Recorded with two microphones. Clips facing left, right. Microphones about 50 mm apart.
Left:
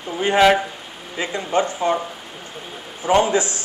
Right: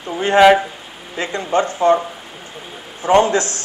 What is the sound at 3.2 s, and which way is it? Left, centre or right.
Speech, centre.